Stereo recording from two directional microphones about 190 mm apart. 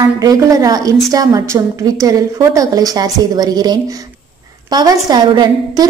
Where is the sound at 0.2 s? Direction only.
20° right (ahead or behind).